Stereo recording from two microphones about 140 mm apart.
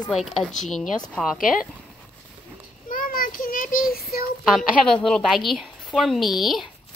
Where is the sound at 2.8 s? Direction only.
90° left.